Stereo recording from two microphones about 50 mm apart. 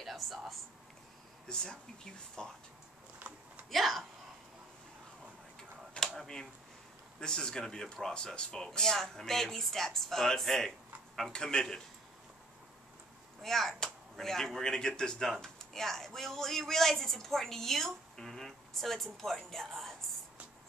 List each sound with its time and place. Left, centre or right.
0.0 s speech: centre
1.5 s speech: centre
3.3 s a sound: centre
3.7 s speech: centre
6.0 s a sound: left
7.2 s speech: centre
13.4 s speech: centre